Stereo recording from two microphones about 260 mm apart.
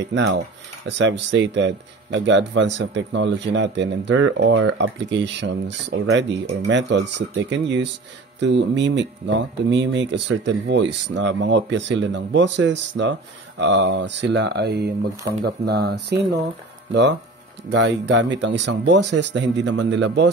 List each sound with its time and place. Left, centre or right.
0.1 s cutlery: right
0.4 s speech: right